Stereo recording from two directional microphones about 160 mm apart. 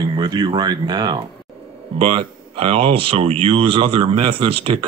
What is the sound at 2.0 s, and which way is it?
Speech, 35° right (ahead or behind).